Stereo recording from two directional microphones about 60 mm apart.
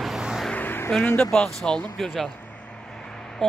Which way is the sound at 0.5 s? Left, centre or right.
Left.